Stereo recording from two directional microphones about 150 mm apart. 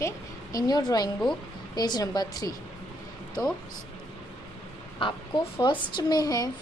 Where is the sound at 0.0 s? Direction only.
25° left (ahead or behind).